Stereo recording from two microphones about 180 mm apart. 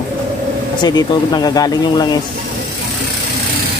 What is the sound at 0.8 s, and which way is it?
Speech, 25° left (ahead or behind).